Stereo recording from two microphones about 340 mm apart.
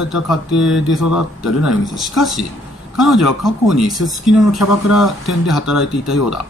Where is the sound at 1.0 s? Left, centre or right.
Left.